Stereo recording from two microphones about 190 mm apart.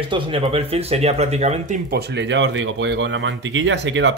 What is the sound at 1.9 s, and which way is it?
Speech, 60° right (ahead or behind).